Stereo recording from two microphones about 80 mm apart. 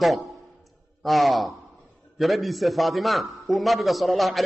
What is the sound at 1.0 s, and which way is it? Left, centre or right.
A man's voice, centre.